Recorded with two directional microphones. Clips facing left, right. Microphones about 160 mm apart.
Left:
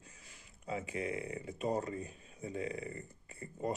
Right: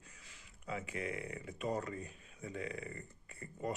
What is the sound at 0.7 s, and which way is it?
Speech, 30° left (ahead or behind).